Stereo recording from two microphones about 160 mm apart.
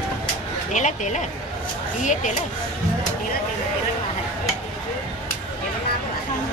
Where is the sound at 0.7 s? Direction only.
50° left (ahead or behind).